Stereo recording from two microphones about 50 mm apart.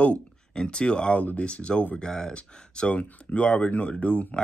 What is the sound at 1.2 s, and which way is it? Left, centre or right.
Speech, left.